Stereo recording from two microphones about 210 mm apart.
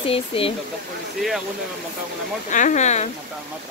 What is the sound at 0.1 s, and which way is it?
Speech, 25° left (ahead or behind).